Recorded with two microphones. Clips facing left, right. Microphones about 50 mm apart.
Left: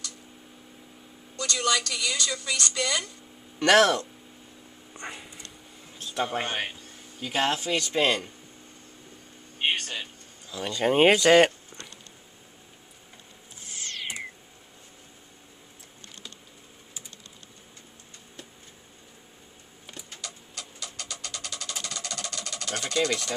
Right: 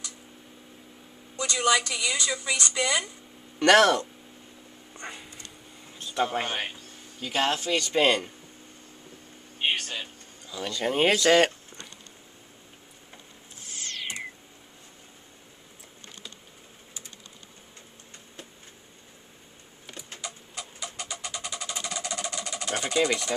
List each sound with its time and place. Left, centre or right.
1.3 s a woman's voice: centre
3.5 s speech: centre
5.1 s a sound: centre
5.9 s speech: centre
9.6 s a sound: centre
10.7 s speech: left
20.2 s engine: centre